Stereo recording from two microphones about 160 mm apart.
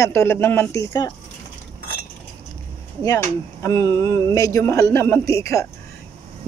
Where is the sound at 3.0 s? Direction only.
20° left (ahead or behind).